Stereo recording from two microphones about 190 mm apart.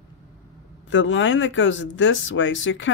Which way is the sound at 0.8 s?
85° left.